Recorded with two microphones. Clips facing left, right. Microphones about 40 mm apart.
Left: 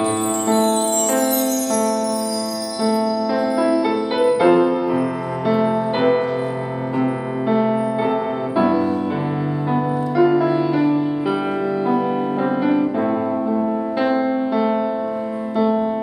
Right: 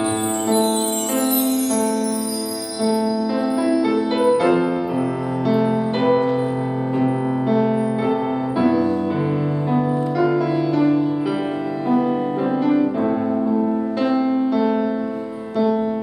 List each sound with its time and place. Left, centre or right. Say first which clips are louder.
0.5 s music: left 2 dB; centre
2.8 s music: even; centre
12.4 s music: right 1 dB; centre